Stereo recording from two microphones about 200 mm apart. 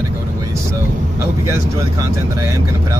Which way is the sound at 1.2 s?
15° right (ahead or behind).